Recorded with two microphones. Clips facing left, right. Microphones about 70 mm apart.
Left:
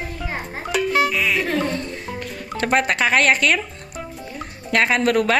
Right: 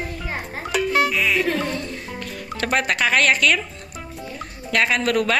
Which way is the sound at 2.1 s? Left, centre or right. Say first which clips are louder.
Left 2 dB; left.